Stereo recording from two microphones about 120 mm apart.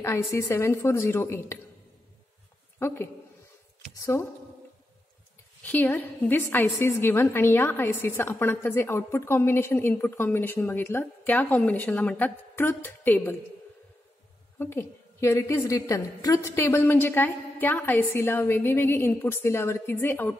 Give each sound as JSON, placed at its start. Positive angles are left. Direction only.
{"t": 0.0, "sound": "a woman's voice", "side_deg": 25}
{"t": 2.8, "sound": "a woman's voice", "side_deg": 20}
{"t": 5.6, "sound": "a woman's voice", "side_deg": 15}
{"t": 14.6, "sound": "a woman's voice", "side_deg": 20}